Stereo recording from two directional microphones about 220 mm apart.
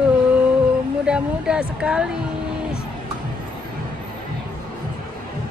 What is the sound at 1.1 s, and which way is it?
A woman's voice, 5° right (ahead or behind).